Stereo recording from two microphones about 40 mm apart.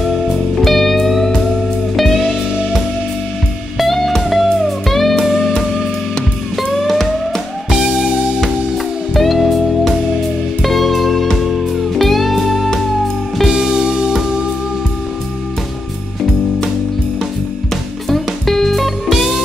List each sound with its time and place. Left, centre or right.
0.6 s music: centre
3.7 s music: centre
6.8 s music: centre
9.1 s music: centre
13.5 s music: centre
18.0 s music: centre
19.0 s music: centre